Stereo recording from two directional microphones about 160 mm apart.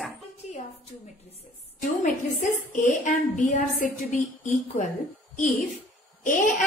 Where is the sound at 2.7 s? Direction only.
55° left (ahead or behind).